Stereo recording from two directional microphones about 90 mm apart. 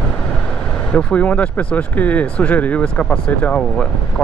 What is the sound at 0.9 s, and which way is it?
Speech, 15° left (ahead or behind).